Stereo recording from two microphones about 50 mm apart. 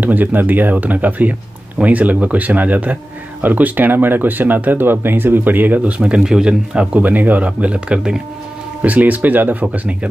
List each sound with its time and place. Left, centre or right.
0.0 s a man's voice: right
5.9 s speech: right
7.0 s speech: right; by 8.2 s centre
8.8 s a man's voice: right